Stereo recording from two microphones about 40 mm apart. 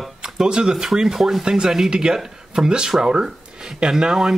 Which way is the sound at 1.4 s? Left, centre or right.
Centre.